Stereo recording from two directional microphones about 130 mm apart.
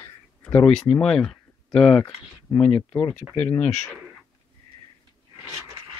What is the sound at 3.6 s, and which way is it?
Speech, 60° left (ahead or behind).